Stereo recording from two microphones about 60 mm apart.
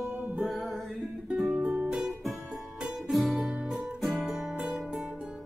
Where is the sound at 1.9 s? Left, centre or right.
Centre.